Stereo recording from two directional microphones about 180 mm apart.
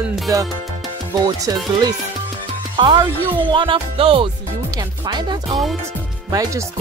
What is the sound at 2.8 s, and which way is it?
Music, 25° right (ahead or behind).